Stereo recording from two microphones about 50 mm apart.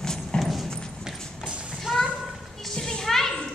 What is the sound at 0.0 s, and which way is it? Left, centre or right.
Clip-clop, centre.